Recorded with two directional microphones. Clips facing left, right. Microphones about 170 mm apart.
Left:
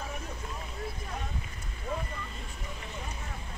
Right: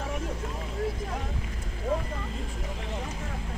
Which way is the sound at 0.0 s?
90° right.